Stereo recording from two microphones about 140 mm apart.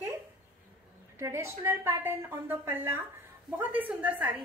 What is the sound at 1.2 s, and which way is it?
A woman's voice, 20° right (ahead or behind).